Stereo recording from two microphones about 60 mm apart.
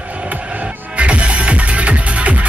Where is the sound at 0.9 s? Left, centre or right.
Right.